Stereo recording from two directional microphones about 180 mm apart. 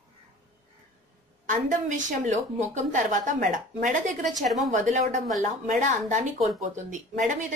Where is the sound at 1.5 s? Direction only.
45° right (ahead or behind).